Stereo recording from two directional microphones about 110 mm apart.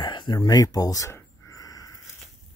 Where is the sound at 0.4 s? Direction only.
35° left (ahead or behind).